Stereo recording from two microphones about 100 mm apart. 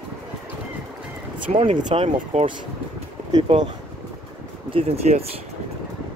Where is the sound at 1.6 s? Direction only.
75° right (ahead or behind).